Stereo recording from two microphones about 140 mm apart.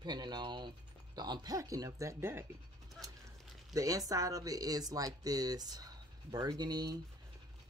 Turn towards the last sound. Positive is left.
turn(degrees=-30)  # may be behind; listen again after turning